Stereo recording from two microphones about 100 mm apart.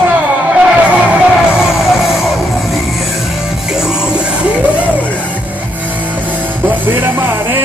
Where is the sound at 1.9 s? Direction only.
Centre (ahead or behind).